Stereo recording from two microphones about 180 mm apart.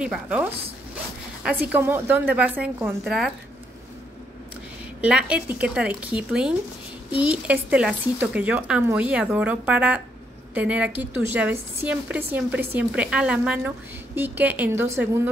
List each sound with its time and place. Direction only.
0.0 s a woman's voice: 5° right (ahead or behind)
1.7 s a woman's voice: 10° right (ahead or behind)
5.0 s a woman's voice: 5° right (ahead or behind)